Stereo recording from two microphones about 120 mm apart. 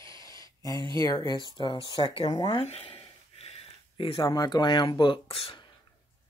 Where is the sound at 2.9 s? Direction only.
50° left (ahead or behind).